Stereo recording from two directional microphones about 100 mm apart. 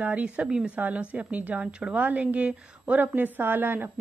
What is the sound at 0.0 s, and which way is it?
A woman's voice, 15° right (ahead or behind).